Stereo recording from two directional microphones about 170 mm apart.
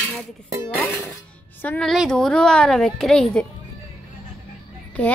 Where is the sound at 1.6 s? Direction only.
5° left (ahead or behind).